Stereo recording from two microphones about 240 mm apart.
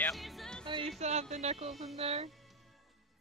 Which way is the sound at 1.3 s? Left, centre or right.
Right.